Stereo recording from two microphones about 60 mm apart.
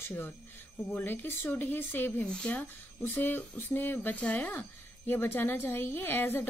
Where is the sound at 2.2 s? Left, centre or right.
Centre.